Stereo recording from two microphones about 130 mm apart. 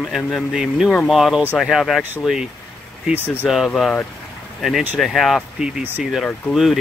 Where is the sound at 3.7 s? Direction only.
Centre (ahead or behind).